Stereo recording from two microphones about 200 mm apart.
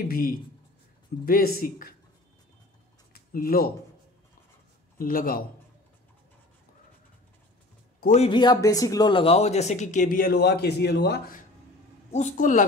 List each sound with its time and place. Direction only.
0.1 s speech: 45° left (ahead or behind)
3.1 s a sound: 45° left (ahead or behind)
4.9 s speech: 45° left (ahead or behind)
8.0 s speech: 35° left (ahead or behind)
8.3 s speech: 20° left (ahead or behind); by 11.3 s 55° left (ahead or behind)
12.1 s speech: 35° left (ahead or behind)